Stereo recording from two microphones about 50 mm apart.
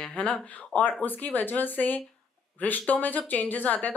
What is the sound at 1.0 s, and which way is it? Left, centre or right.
Speech, left.